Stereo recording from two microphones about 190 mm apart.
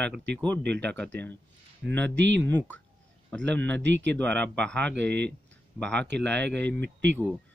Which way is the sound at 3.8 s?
70° right (ahead or behind).